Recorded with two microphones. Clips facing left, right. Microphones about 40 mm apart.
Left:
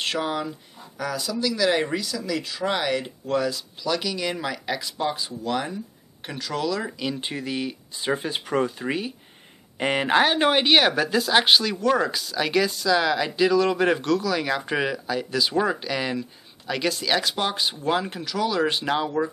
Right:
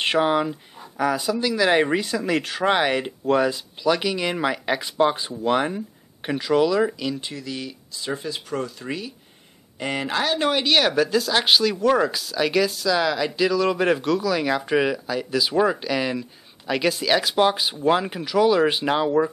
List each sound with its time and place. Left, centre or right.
0.0 s speech: right
2.7 s speech: right
6.2 s speech: centre
7.2 s speech: left; by 19.3 s centre